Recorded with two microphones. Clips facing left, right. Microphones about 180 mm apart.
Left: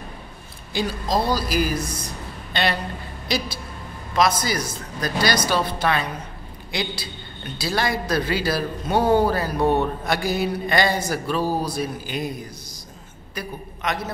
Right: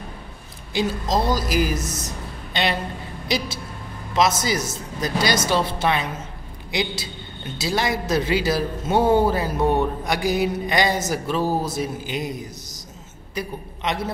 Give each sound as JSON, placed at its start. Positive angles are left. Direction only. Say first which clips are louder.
{"t": 0.7, "sound": "a woman's voice", "louder": "right 1 dB", "side_deg": -20}
{"t": 13.3, "sound": "a man's voice", "louder": "right 3 dB", "side_deg": -25}